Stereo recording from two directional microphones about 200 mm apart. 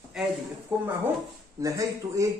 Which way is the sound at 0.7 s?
5° right (ahead or behind).